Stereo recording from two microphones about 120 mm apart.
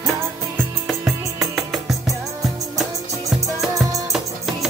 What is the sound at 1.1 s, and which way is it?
Music, centre (ahead or behind).